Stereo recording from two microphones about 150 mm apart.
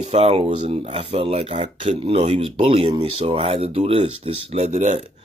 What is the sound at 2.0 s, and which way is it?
Speech, 40° right (ahead or behind).